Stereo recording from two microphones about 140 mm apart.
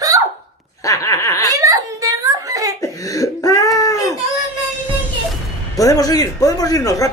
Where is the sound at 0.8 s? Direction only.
25° left (ahead or behind).